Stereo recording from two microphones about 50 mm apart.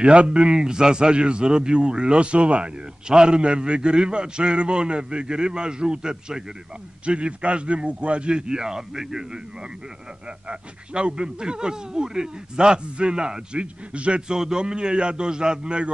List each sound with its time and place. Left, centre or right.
0.0 s a man's voice: right